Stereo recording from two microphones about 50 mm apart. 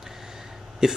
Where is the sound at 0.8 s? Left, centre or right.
Centre.